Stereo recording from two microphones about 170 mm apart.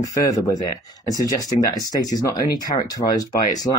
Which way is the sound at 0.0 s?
20° left (ahead or behind).